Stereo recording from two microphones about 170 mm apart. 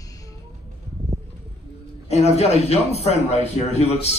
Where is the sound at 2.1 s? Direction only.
40° left (ahead or behind).